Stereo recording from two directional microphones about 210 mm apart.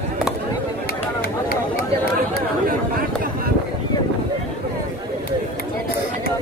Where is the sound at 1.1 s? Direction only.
45° left (ahead or behind).